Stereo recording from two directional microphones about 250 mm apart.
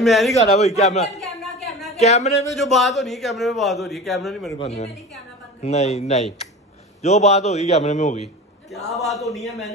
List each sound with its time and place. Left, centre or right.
0.0 s a man's voice: centre
0.3 s a man's voice: left
1.2 s a sound: centre
1.9 s speech: left
2.7 s speech: centre
4.5 s a man's voice: left
8.9 s speech: centre
9.3 s a man's voice: left